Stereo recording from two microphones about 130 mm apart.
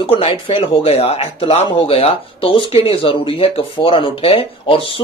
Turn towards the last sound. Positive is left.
turn(degrees=45)  # may be behind; listen again after turning